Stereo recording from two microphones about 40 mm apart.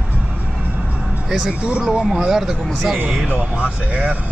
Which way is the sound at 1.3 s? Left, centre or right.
Centre.